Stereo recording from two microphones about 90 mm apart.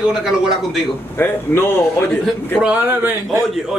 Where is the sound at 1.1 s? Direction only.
25° left (ahead or behind).